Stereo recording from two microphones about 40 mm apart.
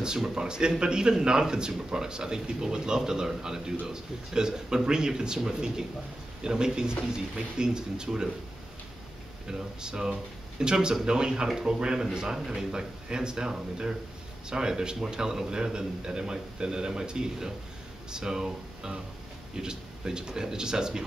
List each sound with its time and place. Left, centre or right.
0.2 s a man's voice: centre
9.5 s a man's voice: centre